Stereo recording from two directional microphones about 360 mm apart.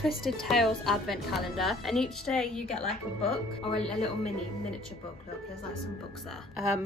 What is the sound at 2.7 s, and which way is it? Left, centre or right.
Speech, centre.